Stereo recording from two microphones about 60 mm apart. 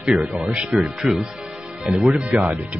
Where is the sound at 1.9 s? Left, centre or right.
Centre.